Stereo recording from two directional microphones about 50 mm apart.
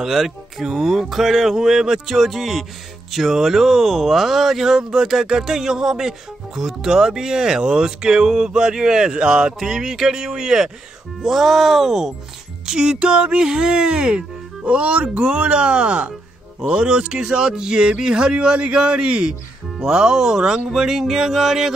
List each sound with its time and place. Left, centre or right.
0.0 s speech: centre